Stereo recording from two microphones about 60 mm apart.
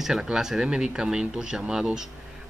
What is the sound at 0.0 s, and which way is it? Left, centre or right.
Speech, centre.